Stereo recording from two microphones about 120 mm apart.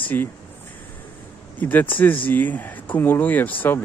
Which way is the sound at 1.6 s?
15° left (ahead or behind).